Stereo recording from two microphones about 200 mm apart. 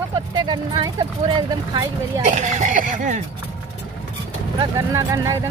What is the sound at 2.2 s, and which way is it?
Speech, 35° right (ahead or behind).